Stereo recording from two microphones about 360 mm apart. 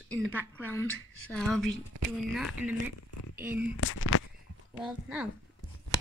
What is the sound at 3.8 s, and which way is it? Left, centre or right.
Speech, left.